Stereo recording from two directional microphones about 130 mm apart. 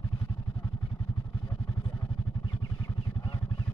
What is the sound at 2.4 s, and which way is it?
Vehicle, 30° left (ahead or behind).